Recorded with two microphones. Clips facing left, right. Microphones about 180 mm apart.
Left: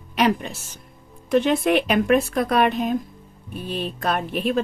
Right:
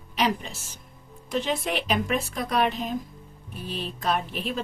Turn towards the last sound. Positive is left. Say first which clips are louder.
# left 5 dB
turn(degrees=60)  # may be behind; listen again after turning